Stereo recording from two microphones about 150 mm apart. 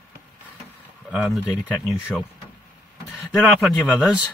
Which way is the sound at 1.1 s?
5° right (ahead or behind).